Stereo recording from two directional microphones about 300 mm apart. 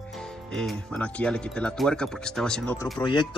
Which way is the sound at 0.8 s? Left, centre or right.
Centre.